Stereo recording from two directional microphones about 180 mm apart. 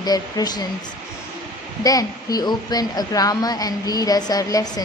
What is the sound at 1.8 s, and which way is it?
A woman's voice, 20° left (ahead or behind).